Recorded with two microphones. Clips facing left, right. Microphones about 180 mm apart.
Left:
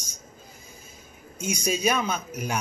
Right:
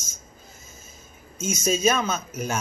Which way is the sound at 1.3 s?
15° left (ahead or behind).